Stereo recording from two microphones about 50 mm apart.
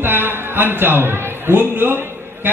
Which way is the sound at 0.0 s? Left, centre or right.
Right.